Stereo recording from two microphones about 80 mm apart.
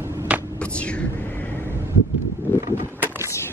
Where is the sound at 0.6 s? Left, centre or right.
Centre.